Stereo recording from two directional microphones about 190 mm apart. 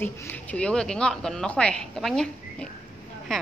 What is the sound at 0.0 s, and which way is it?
Speech, 10° left (ahead or behind).